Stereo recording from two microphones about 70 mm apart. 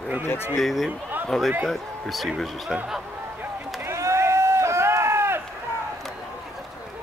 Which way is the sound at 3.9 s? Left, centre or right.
Right.